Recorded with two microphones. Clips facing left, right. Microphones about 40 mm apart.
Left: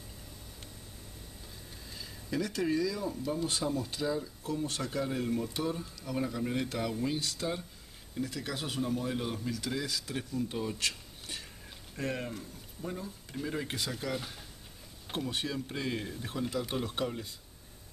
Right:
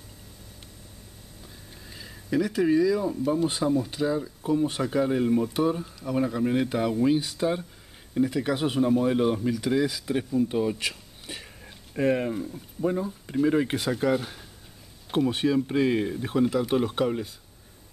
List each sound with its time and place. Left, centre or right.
1.9 s speech: centre